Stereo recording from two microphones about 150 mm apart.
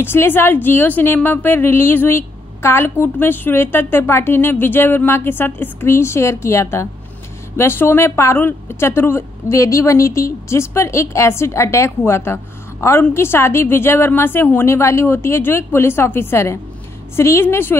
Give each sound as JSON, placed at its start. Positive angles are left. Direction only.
{"t": 0.0, "sound": "a woman's voice", "side_deg": 15}